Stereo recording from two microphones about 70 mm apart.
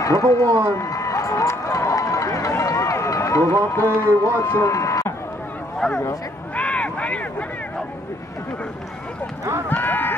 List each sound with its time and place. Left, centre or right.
0.0 s a man's voice: left
0.5 s speech: right
0.7 s run: left
3.8 s speech: right
4.5 s speech: left
4.7 s a sound: left
5.8 s speech: centre
6.5 s a sound: centre
9.4 s speech: right
9.7 s a sound: left